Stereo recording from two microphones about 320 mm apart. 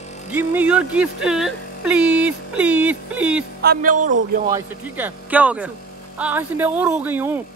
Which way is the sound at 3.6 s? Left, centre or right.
Right.